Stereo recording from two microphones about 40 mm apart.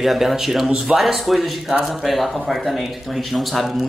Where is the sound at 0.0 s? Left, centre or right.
Centre.